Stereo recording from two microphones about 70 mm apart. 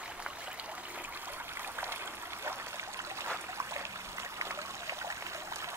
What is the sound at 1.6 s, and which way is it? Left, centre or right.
Stream, right.